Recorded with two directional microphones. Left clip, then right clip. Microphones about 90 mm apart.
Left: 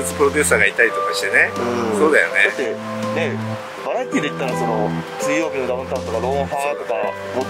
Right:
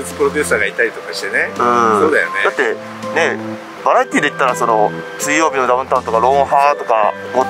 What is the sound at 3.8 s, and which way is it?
Speech, 40° left (ahead or behind).